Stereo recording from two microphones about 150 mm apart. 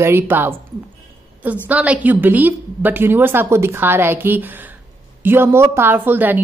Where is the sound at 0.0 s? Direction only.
15° right (ahead or behind).